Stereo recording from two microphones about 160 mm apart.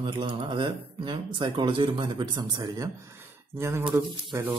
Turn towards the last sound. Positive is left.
turn(degrees=-15)  # may be behind; listen again after turning